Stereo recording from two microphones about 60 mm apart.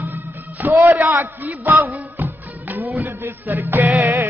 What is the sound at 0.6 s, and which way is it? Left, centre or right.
A man's voice, right.